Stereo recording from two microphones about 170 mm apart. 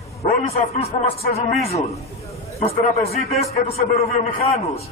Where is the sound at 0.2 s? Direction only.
35° left (ahead or behind).